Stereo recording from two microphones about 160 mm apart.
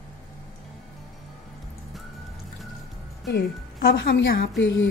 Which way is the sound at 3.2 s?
90° left.